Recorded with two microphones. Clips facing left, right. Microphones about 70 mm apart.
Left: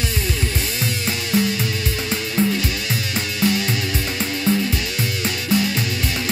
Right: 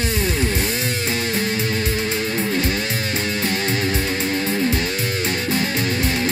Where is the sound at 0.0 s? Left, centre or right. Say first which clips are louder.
Right 3 dB; right.